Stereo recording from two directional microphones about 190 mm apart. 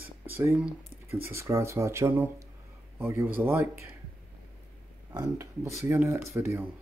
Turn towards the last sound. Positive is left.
turn(degrees=-15)  # may be behind; listen again after turning